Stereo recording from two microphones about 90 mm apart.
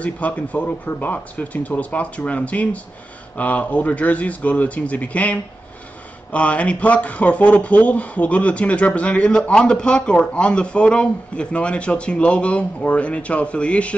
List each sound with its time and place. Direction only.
0.0 s speech: 15° left (ahead or behind)